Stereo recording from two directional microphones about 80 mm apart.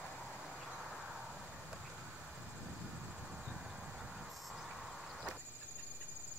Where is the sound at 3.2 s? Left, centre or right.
Centre.